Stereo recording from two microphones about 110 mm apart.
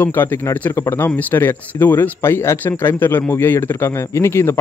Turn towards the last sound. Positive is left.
turn(degrees=25)  # may be behind; listen again after turning